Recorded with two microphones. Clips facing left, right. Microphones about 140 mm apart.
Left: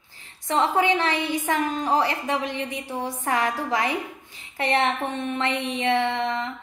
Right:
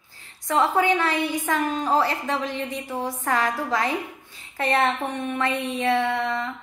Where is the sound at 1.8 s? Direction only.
15° left (ahead or behind).